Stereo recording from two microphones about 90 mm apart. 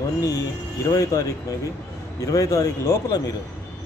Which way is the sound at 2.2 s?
40° left (ahead or behind).